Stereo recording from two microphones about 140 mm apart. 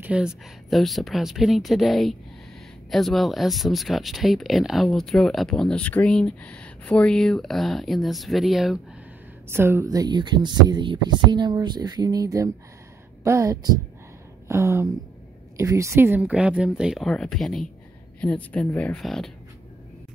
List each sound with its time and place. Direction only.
0.0 s speech: 5° right (ahead or behind)
9.5 s speech: 15° right (ahead or behind); by 19.3 s centre (ahead or behind)